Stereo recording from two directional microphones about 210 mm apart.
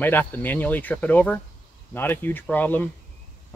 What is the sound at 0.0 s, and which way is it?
Speech, 10° left (ahead or behind).